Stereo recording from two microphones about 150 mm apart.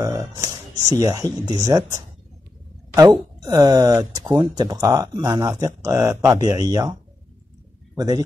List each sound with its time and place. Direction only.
0.0 s speech: 20° right (ahead or behind)
3.4 s a man's voice: 25° right (ahead or behind)